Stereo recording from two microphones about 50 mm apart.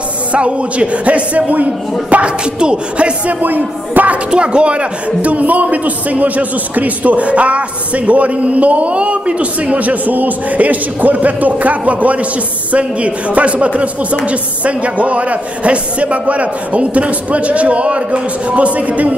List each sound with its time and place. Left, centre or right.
0.3 s a man's voice: right
3.3 s speech: right
4.3 s a man's voice: centre